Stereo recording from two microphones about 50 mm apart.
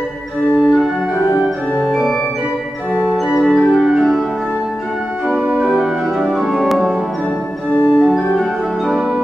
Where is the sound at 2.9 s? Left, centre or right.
Right.